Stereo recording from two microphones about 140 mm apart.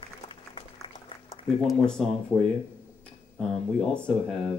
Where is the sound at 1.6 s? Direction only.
5° left (ahead or behind).